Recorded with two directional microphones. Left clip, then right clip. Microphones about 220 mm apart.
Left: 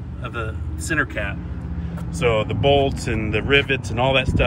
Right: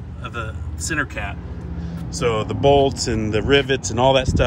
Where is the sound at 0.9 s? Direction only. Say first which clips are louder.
Left 2 dB; 15° right (ahead or behind).